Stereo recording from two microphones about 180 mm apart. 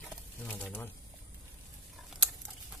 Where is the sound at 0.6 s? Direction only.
10° left (ahead or behind).